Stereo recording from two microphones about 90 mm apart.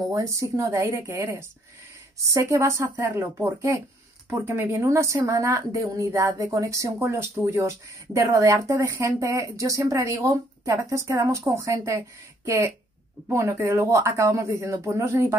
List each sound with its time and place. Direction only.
0.1 s speech: 35° right (ahead or behind)